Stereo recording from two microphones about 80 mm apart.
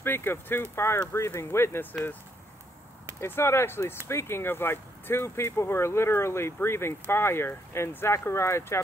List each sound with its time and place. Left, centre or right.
0.0 s speech: left
3.2 s speech: left